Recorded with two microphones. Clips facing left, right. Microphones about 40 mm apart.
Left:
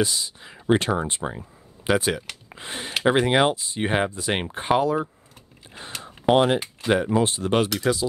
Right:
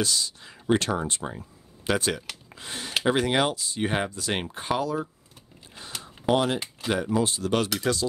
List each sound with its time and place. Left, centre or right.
0.0 s speech: centre
2.5 s speech: left
7.7 s speech: centre